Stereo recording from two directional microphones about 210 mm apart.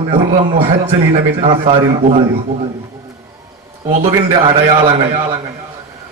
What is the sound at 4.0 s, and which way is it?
Speech, 30° right (ahead or behind).